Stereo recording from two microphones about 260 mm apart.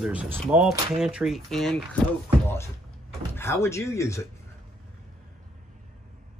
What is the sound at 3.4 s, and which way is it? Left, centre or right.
Speech, centre.